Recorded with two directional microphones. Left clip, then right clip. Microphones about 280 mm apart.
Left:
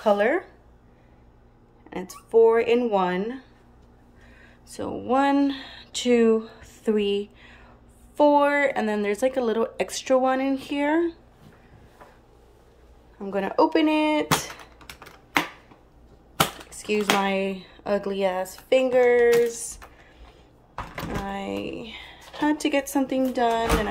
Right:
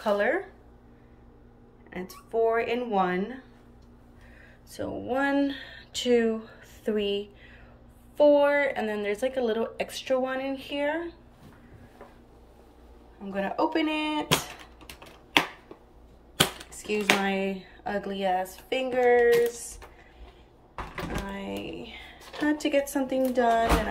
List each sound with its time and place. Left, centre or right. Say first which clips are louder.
0.0 s speech: left 4 dB; centre
1.9 s speech: left 6 dB; centre
4.6 s speech: left 5 dB; centre
13.2 s speech: left 6 dB; centre
16.8 s speech: left 2 dB; centre
21.3 s speech: left 5 dB; centre